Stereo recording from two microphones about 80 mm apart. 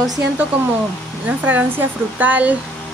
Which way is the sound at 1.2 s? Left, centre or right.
Right.